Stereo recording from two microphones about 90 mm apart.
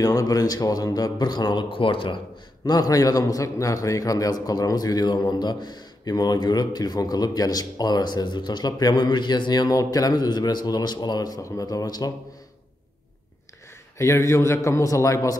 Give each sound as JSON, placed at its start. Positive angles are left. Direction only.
{"t": 0.0, "sound": "a man's voice", "side_deg": 40}
{"t": 2.6, "sound": "a man's voice", "side_deg": 45}
{"t": 13.9, "sound": "speech", "side_deg": 35}